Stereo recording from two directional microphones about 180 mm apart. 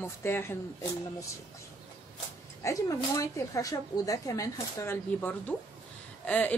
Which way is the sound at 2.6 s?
20° left (ahead or behind).